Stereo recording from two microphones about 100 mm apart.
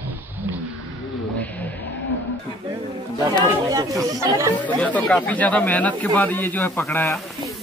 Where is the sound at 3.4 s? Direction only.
35° right (ahead or behind).